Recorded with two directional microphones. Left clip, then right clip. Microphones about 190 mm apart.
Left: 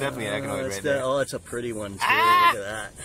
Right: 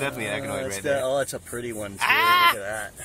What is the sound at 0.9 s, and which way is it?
Speech, 45° left (ahead or behind).